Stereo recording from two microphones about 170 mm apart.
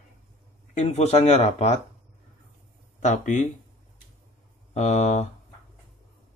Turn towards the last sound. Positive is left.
turn(degrees=45)  # may be behind; listen again after turning